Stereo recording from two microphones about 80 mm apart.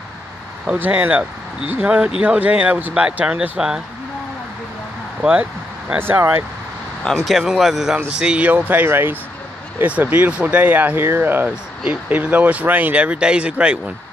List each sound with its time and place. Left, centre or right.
0.7 s speech: right
5.2 s a sound: centre
5.9 s speech: right
7.2 s speech: centre